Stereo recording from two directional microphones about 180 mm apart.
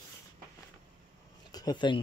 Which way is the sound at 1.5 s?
25° left (ahead or behind).